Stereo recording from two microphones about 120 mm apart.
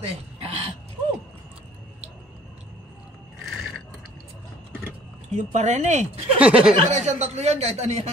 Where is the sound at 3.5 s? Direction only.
5° right (ahead or behind).